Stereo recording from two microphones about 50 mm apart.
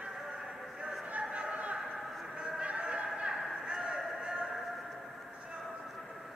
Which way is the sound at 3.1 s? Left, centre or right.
Centre.